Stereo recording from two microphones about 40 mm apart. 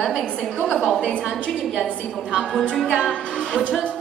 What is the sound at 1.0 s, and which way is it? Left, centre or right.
Speech, left.